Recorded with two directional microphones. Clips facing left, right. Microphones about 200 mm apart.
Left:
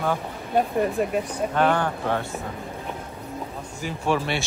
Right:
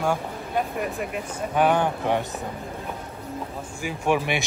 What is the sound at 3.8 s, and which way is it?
Speech, 15° right (ahead or behind).